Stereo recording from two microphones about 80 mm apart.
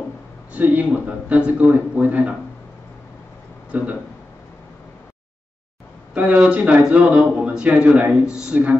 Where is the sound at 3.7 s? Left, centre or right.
Centre.